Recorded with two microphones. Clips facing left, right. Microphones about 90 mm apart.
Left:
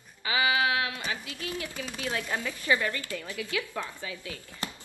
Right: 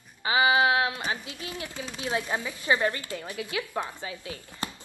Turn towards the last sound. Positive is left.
turn(degrees=-25)  # may be behind; listen again after turning